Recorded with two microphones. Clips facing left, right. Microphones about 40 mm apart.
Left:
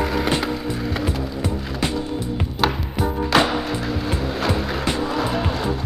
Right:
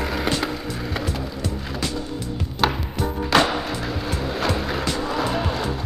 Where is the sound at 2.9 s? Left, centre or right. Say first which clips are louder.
Left 2 dB; centre.